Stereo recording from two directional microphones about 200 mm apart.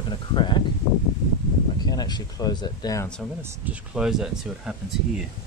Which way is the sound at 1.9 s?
20° left (ahead or behind).